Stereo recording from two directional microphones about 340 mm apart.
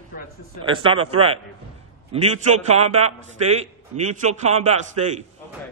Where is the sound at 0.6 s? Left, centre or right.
Centre.